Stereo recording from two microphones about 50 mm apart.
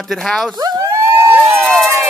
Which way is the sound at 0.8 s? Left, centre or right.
Right.